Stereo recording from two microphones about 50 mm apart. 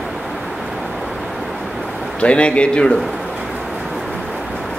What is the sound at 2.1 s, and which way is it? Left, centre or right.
Speech, left.